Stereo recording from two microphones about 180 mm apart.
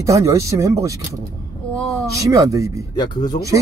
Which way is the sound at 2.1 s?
20° right (ahead or behind).